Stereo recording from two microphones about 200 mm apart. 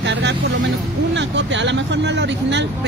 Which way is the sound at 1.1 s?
65° right (ahead or behind).